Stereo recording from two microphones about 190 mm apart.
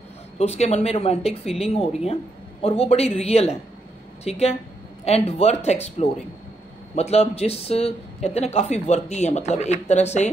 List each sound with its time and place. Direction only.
0.4 s speech: 35° left (ahead or behind)